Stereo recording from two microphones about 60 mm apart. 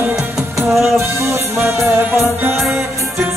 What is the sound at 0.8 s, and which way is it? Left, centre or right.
Music, right.